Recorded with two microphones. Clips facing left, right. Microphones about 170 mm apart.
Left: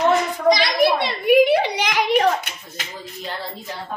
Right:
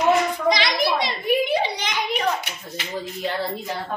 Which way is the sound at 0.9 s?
65° left (ahead or behind).